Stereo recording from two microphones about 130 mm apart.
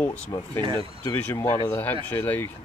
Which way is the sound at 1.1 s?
20° left (ahead or behind).